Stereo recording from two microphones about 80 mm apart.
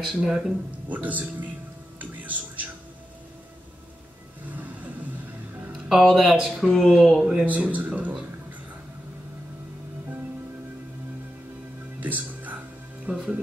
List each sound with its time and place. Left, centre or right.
0.1 s speech: centre
0.8 s speech: centre
2.0 s music: centre
5.9 s speech: centre
7.4 s speech: centre
12.0 s music: centre
13.0 s speech: centre